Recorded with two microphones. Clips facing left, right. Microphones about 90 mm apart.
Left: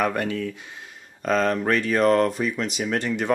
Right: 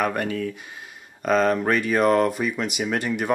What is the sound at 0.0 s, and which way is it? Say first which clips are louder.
Speech: even; 15° right (ahead or behind).